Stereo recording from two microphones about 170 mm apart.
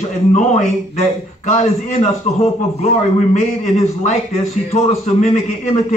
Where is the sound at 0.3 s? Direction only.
40° left (ahead or behind).